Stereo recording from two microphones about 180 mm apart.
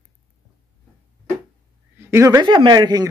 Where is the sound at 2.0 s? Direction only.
15° right (ahead or behind).